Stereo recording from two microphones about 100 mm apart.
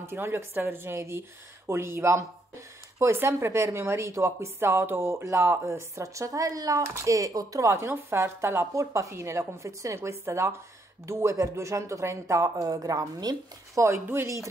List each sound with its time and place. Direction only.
0.1 s speech: 25° right (ahead or behind); by 13.8 s 40° right (ahead or behind)
13.8 s speech: 25° right (ahead or behind)